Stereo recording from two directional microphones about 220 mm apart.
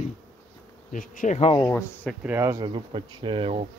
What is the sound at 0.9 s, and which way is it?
Bee, 40° left (ahead or behind).